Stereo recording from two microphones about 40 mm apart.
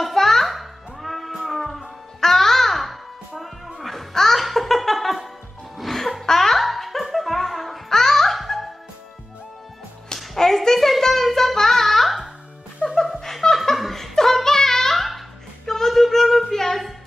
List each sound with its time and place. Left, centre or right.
0.0 s music: centre
10.1 s child singing: centre
13.2 s laughter: centre
13.7 s a sound: centre
15.9 s music: centre